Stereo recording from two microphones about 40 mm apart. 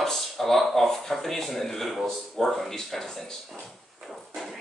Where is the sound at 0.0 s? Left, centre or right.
Centre.